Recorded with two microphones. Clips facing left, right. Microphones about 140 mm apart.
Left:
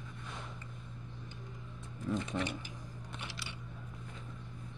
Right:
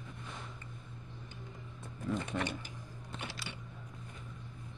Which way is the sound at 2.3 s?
15° left (ahead or behind).